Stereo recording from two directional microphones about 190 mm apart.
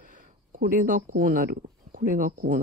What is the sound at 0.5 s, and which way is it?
Speech, 45° right (ahead or behind).